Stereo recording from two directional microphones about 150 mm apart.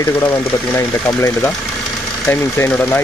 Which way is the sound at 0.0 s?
15° left (ahead or behind).